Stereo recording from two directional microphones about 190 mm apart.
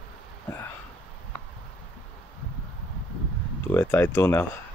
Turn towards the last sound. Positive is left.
turn(degrees=10)  # may be behind; listen again after turning